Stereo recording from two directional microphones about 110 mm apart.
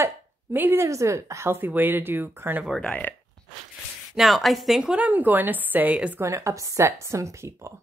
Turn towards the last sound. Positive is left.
turn(degrees=-25)  # may be behind; listen again after turning